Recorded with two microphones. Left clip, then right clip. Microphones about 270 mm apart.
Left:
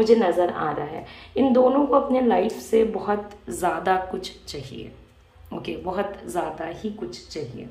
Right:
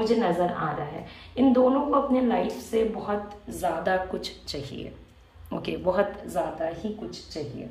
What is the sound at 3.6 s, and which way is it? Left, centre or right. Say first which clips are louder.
A woman's voice: left 3 dB; centre.